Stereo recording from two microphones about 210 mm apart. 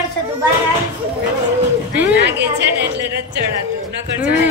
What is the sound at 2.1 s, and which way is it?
A woman's voice, 55° right (ahead or behind).